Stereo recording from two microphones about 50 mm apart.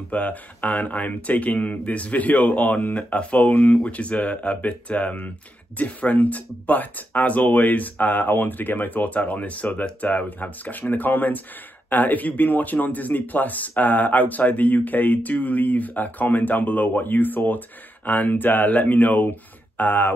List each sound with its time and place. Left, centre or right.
0.1 s speech: left